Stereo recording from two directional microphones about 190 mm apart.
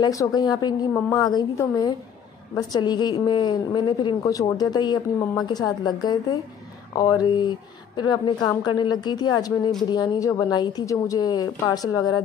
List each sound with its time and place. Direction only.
0.0 s a woman's voice: 20° left (ahead or behind)